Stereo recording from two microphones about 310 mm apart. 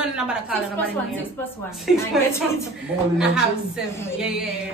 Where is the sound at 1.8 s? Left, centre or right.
Centre.